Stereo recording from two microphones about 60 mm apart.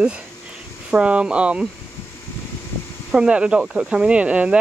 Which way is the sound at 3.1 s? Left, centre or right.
Centre.